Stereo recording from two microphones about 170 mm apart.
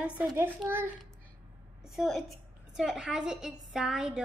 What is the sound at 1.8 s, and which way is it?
A woman's voice, centre (ahead or behind).